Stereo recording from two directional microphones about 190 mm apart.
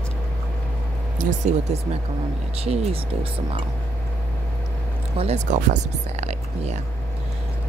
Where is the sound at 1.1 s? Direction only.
40° right (ahead or behind).